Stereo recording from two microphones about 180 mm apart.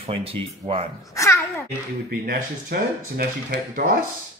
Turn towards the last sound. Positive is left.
turn(degrees=-50)  # may be behind; listen again after turning